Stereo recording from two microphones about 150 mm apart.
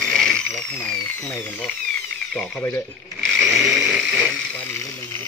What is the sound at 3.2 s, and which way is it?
Snoring, centre (ahead or behind).